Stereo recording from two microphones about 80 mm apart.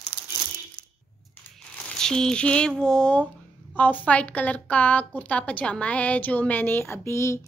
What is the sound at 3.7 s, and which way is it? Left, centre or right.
A woman's voice, left.